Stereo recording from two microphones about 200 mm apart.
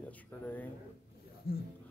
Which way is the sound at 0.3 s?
10° left (ahead or behind).